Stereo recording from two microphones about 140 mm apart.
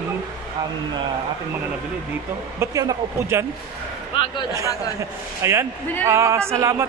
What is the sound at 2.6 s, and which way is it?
Speech, 25° right (ahead or behind).